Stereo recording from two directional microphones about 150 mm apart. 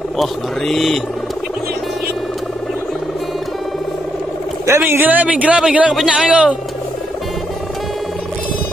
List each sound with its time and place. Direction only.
0.2 s speech: centre (ahead or behind)
4.6 s a man's voice: 15° right (ahead or behind)